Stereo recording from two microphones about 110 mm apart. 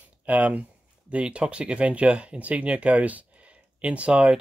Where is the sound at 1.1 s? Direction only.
10° right (ahead or behind).